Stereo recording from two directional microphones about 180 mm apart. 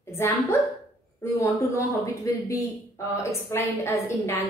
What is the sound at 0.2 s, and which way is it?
A woman's voice, 15° left (ahead or behind).